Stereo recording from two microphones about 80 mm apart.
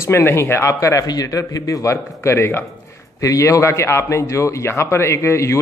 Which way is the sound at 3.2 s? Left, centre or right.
Left.